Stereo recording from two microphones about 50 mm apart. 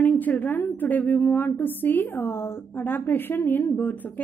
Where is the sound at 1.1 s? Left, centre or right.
Left.